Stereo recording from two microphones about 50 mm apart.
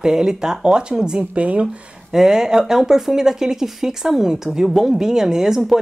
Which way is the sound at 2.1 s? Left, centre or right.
Centre.